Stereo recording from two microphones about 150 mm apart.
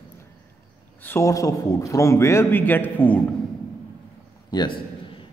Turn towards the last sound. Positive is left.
turn(degrees=30)  # may be behind; listen again after turning